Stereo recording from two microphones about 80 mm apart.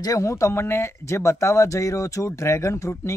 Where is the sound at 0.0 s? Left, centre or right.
Left.